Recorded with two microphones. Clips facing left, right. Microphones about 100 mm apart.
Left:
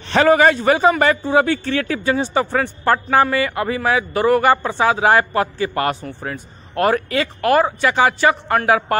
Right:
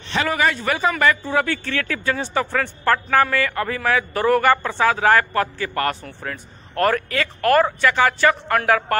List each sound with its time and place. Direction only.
0.1 s a man's voice: 40° left (ahead or behind)
0.6 s a man's voice: 25° left (ahead or behind)